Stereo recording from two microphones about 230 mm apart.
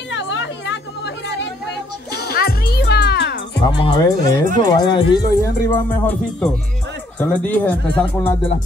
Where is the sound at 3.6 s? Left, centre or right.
Centre.